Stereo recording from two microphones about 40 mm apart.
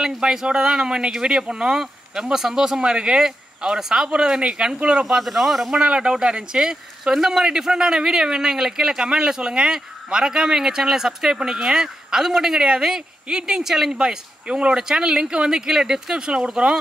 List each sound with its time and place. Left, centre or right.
0.2 s speech: centre
5.2 s a man's voice: centre
5.7 s speech: right
12.6 s speech: right
13.9 s speech: right
14.8 s speech: centre